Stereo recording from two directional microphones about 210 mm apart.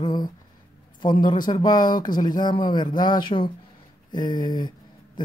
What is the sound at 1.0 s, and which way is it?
Speech, 20° left (ahead or behind).